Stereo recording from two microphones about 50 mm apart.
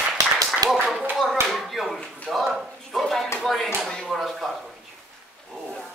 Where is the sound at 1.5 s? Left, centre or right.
Centre.